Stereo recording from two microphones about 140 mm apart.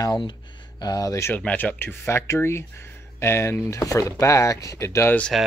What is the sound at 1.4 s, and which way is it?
Speech, 10° left (ahead or behind).